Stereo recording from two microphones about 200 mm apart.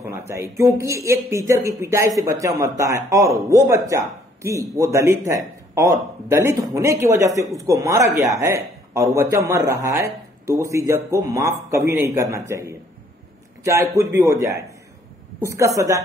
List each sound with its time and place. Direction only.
0.3 s speech: 15° right (ahead or behind)